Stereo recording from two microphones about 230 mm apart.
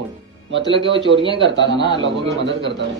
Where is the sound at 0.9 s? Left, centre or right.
Right.